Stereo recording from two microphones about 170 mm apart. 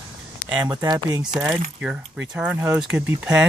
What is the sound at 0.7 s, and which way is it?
Speech, 20° right (ahead or behind).